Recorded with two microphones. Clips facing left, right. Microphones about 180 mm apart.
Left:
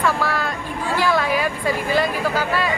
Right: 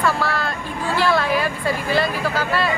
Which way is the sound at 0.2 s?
10° left (ahead or behind).